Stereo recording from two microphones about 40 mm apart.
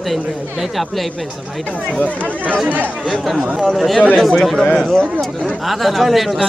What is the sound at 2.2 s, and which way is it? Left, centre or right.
Speech, right.